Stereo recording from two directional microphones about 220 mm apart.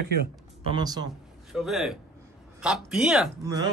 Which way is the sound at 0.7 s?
20° right (ahead or behind).